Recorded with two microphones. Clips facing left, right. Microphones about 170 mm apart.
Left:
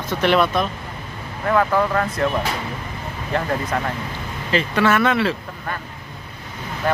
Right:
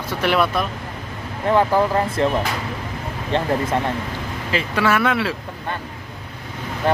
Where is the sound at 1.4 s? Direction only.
30° right (ahead or behind).